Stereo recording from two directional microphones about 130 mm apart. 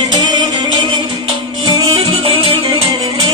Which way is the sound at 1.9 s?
45° right (ahead or behind).